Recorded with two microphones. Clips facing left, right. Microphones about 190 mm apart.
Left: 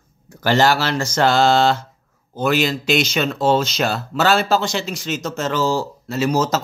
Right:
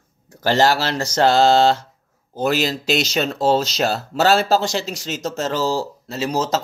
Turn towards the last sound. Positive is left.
turn(degrees=-30)  # may be behind; listen again after turning